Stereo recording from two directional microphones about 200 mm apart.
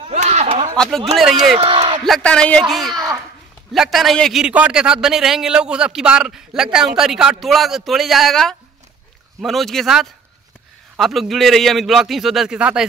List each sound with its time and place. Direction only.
0.1 s a sound: 35° right (ahead or behind)
0.7 s a man's voice: centre (ahead or behind)
1.3 s a man's voice: 30° right (ahead or behind)
2.0 s a man's voice: centre (ahead or behind)